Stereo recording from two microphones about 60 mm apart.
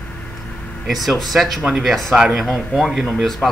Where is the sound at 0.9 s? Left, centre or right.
Centre.